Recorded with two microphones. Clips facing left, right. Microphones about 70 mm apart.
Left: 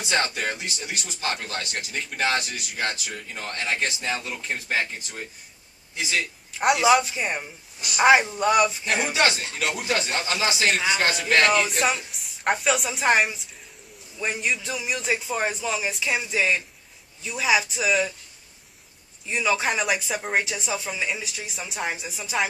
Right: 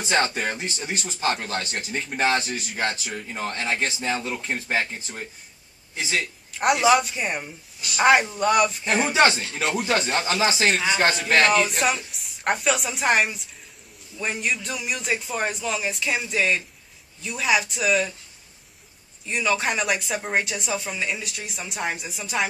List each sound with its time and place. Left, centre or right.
0.0 s a man's voice: right
6.5 s speech: centre
9.1 s speech: right
11.3 s speech: centre
19.2 s speech: centre